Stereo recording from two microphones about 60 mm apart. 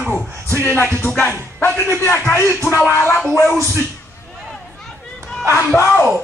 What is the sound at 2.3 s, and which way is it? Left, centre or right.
Speech, left.